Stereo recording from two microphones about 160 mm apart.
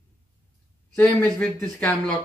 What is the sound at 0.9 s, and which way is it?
Speech, 5° left (ahead or behind).